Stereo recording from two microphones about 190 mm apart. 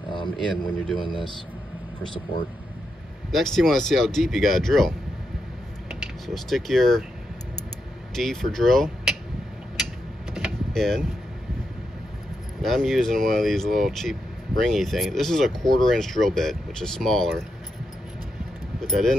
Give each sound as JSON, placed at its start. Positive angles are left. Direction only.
{"t": 0.1, "sound": "a man's voice", "side_deg": 25}
{"t": 3.3, "sound": "speech", "side_deg": 0}
{"t": 6.2, "sound": "speech", "side_deg": 0}
{"t": 8.1, "sound": "speech", "side_deg": 0}
{"t": 10.3, "sound": "vehicle", "side_deg": 0}
{"t": 12.6, "sound": "speech", "side_deg": 0}
{"t": 18.8, "sound": "speech", "side_deg": 0}